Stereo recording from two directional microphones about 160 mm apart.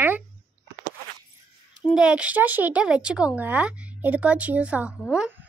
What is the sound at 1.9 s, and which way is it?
A woman's voice, 5° right (ahead or behind).